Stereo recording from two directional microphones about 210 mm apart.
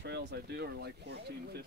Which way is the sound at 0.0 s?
55° right (ahead or behind).